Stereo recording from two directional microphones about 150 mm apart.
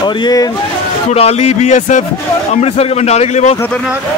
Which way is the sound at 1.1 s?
45° left (ahead or behind).